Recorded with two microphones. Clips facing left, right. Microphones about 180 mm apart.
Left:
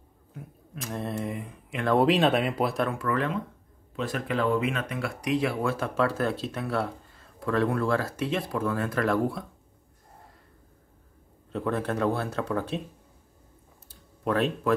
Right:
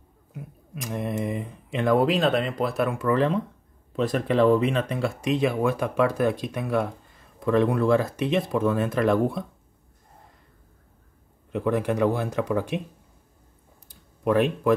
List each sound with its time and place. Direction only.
0.3 s speech: 15° right (ahead or behind)
2.0 s speech: centre (ahead or behind)
2.9 s speech: 25° right (ahead or behind)
11.5 s speech: 15° right (ahead or behind)
13.8 s a sound: 15° right (ahead or behind)